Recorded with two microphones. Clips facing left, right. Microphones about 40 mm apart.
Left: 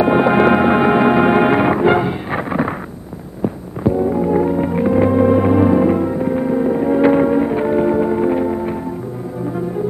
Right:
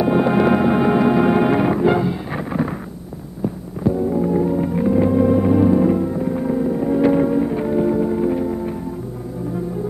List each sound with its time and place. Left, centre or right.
0.0 s music: left